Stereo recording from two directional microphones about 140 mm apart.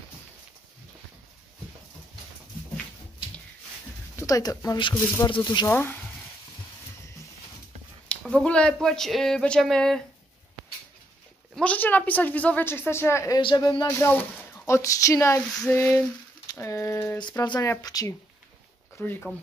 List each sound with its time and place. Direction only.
4.2 s a man's voice: 25° left (ahead or behind)
5.7 s speech: 15° left (ahead or behind)
8.2 s speech: 5° left (ahead or behind)
11.5 s speech: 10° left (ahead or behind)
13.4 s a man's voice: 35° left (ahead or behind)
13.8 s speech: 15° left (ahead or behind)
17.2 s speech: 30° left (ahead or behind)
18.9 s speech: 15° left (ahead or behind)